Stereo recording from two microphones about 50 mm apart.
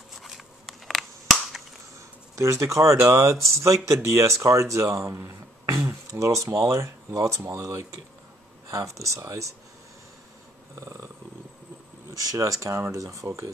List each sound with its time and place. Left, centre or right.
0.1 s crushing: centre
2.0 s speech: right
6.1 s speech: right
12.4 s speech: right